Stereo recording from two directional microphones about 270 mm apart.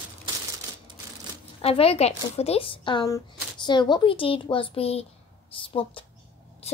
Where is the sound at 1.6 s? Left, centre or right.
Left.